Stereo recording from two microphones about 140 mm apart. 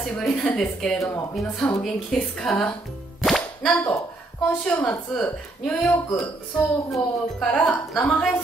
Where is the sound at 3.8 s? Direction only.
25° left (ahead or behind).